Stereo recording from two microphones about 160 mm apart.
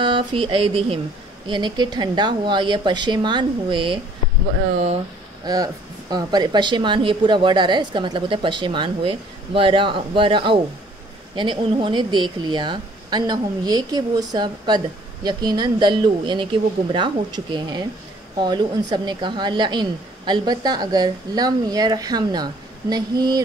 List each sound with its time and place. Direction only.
0.0 s a woman's voice: 30° right (ahead or behind)
5.4 s a woman's voice: 25° right (ahead or behind)